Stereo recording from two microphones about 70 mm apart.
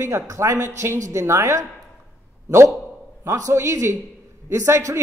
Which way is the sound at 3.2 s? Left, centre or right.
Right.